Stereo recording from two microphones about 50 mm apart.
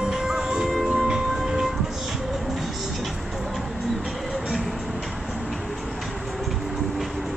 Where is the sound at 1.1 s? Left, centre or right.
Centre.